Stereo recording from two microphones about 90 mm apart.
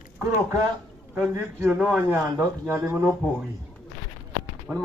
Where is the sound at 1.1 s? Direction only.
20° right (ahead or behind).